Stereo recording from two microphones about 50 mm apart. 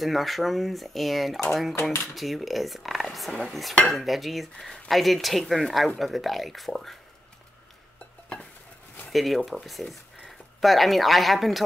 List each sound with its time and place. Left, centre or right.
0.0 s speech: centre
1.8 s speech: left
2.1 s speech: centre
9.1 s speech: centre